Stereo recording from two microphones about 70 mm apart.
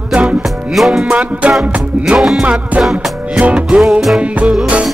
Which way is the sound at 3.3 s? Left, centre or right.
Centre.